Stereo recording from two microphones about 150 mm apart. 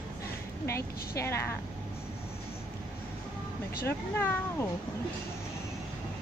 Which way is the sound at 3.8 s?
15° left (ahead or behind).